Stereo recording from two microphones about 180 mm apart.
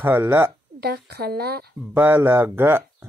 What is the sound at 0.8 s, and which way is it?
Speech, 60° right (ahead or behind).